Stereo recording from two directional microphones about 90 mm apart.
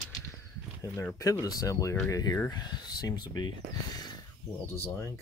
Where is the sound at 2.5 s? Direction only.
50° left (ahead or behind).